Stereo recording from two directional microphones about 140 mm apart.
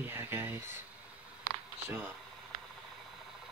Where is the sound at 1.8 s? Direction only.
15° right (ahead or behind).